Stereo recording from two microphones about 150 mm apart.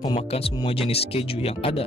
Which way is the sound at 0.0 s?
35° left (ahead or behind).